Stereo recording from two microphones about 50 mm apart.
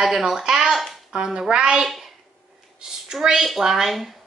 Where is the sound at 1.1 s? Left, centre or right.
Centre.